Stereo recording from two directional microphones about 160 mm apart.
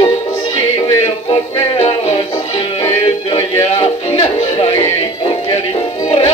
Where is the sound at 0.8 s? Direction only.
30° left (ahead or behind).